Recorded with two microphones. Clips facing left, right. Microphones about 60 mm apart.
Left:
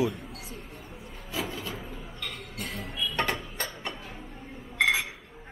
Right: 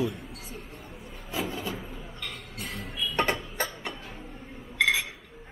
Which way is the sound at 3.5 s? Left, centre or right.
Centre.